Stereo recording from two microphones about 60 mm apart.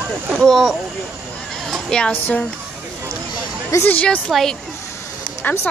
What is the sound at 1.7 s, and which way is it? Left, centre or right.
Speech, centre.